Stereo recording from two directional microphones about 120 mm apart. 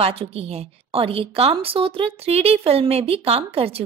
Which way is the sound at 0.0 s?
55° right (ahead or behind).